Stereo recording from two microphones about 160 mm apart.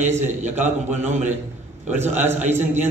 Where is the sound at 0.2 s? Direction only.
45° right (ahead or behind).